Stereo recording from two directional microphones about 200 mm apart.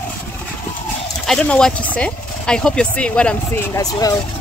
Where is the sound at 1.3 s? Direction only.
5° left (ahead or behind).